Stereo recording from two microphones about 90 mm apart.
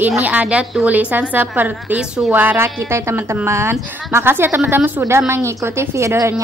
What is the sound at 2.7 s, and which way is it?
A woman's voice, 30° right (ahead or behind).